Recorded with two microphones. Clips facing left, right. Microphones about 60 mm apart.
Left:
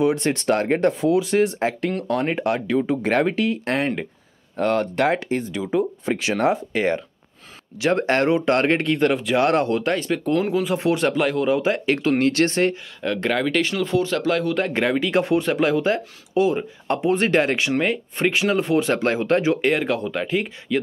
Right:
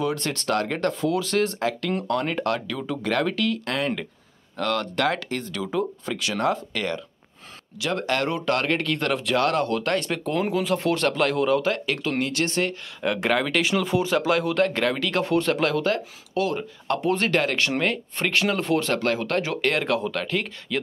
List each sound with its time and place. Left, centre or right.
0.0 s speech: left
1.6 s speech: left
8.9 s speech: centre
9.4 s speech: left
9.9 s speech: centre
11.7 s speech: left
13.0 s speech: centre
14.7 s speech: centre
17.6 s speech: centre
19.5 s speech: centre